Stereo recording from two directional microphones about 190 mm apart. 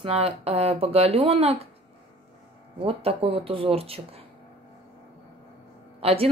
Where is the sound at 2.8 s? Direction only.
30° right (ahead or behind).